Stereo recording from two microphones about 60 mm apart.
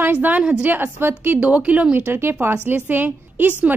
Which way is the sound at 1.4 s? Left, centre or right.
Right.